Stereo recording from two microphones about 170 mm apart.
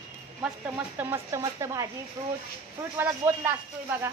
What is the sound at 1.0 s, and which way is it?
Speech, 15° right (ahead or behind).